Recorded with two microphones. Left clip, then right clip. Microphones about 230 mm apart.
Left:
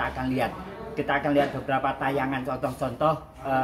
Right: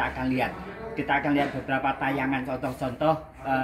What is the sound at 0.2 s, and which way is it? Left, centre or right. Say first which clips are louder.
Speech: even; centre.